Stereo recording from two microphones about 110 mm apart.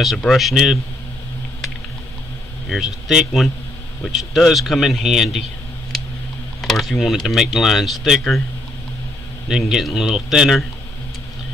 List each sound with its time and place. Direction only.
0.2 s speech: centre (ahead or behind)
2.7 s speech: 5° right (ahead or behind)
6.6 s speech: centre (ahead or behind)
9.5 s speech: 5° right (ahead or behind)